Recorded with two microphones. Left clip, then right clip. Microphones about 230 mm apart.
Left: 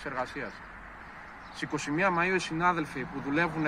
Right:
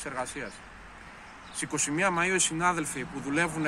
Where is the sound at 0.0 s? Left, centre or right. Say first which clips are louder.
Even; centre.